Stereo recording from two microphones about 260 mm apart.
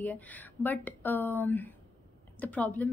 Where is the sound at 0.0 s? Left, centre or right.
Centre.